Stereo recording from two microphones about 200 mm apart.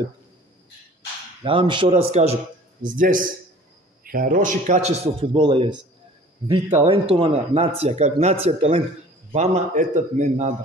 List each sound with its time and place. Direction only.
1.4 s speech: 25° right (ahead or behind)
2.8 s a man's voice: 45° right (ahead or behind); by 5.7 s 25° right (ahead or behind)
6.8 s a man's voice: 30° right (ahead or behind)